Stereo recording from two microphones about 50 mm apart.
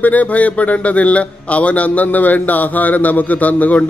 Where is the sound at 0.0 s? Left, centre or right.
Left.